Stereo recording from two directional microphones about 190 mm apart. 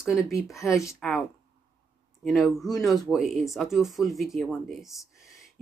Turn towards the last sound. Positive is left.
turn(degrees=0)  # may be behind; listen again after turning